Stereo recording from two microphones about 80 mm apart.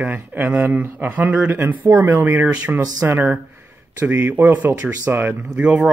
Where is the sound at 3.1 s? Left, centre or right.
Right.